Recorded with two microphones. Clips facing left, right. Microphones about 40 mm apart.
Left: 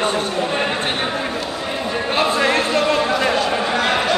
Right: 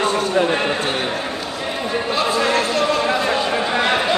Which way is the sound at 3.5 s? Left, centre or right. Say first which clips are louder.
Even; centre.